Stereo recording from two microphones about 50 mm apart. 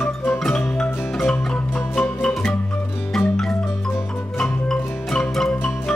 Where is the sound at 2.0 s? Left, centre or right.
Left.